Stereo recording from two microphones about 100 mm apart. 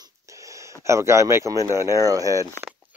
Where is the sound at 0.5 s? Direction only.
30° right (ahead or behind).